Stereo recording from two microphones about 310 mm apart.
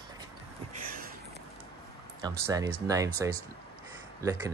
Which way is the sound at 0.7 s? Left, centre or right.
Right.